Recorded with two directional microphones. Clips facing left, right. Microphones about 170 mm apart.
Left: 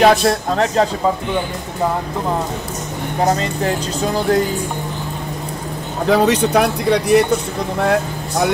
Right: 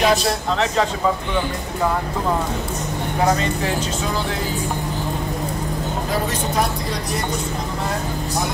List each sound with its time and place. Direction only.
0.0 s speech: 55° left (ahead or behind)
4.0 s speech: 40° left (ahead or behind)
6.0 s speech: 75° left (ahead or behind)